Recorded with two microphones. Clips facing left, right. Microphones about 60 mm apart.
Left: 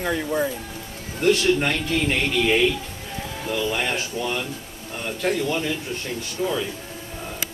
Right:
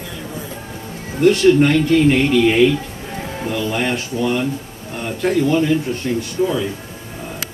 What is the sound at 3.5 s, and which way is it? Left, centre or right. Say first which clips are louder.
A man's voice: right 4 dB; right.